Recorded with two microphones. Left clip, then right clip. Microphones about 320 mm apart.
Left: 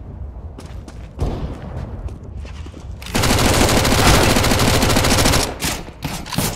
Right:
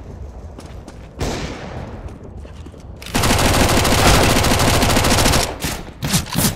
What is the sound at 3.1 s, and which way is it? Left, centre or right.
Machine gun, centre.